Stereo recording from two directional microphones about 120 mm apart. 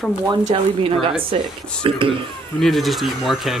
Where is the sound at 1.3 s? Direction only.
45° right (ahead or behind).